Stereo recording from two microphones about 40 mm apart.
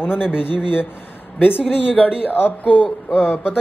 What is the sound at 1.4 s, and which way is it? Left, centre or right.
Speech, centre.